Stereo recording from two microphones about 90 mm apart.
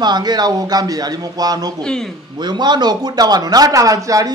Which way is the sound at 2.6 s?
55° right (ahead or behind).